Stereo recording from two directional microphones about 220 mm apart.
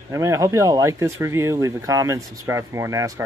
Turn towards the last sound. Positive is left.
turn(degrees=-15)  # may be behind; listen again after turning